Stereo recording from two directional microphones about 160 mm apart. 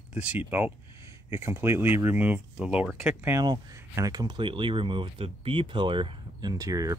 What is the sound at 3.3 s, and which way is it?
Speech, 20° right (ahead or behind).